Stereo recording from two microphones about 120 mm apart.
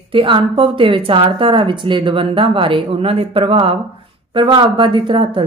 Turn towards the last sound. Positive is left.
turn(degrees=-45)  # may be behind; listen again after turning